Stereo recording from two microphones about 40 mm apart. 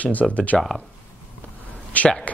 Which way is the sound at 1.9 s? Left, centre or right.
Left.